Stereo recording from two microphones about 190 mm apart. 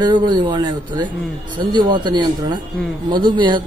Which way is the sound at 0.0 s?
25° right (ahead or behind).